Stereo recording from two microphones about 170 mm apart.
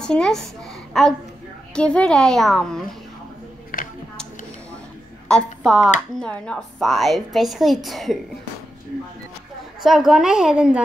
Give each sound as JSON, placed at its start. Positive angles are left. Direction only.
{"t": 0.0, "sound": "a child's voice", "side_deg": 5}
{"t": 3.7, "sound": "a sound", "side_deg": 55}
{"t": 5.3, "sound": "a woman's voice", "side_deg": 0}
{"t": 9.8, "sound": "a woman's voice", "side_deg": 0}